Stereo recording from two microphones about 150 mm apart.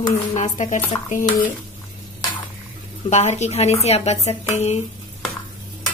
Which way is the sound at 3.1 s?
50° left (ahead or behind).